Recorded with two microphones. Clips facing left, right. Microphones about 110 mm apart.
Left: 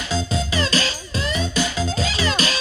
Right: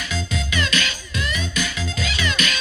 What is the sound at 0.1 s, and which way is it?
Music, 35° left (ahead or behind).